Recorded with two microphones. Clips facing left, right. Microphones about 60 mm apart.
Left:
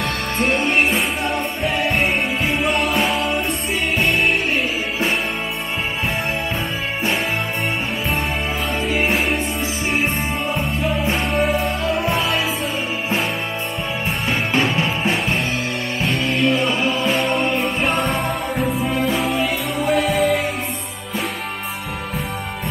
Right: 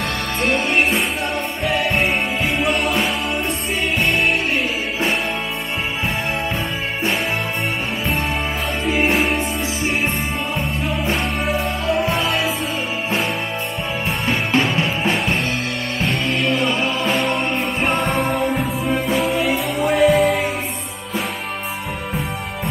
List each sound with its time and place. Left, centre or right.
0.4 s music: centre
8.8 s music: centre
14.2 s music: centre
18.0 s music: right
18.9 s music: centre